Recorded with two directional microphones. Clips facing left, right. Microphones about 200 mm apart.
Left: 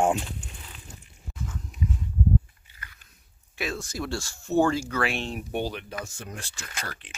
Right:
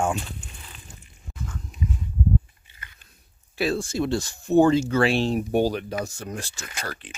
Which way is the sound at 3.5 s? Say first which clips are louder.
Right 8 dB; 30° right (ahead or behind).